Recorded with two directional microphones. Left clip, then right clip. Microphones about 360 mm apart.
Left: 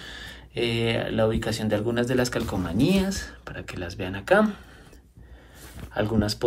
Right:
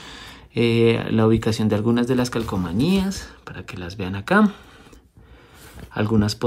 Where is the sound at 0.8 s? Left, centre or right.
Centre.